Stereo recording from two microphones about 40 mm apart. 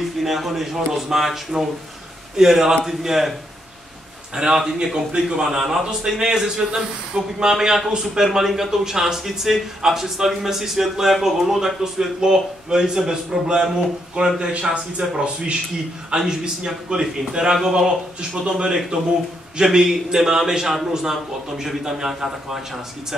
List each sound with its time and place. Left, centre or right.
0.2 s speech: centre
4.4 s speech: centre
14.4 s speech: right; by 22.6 s centre